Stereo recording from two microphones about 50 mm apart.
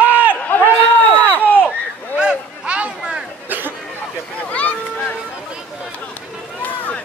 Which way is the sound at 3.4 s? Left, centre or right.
Right.